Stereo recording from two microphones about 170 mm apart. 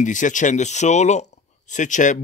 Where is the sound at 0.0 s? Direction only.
50° left (ahead or behind).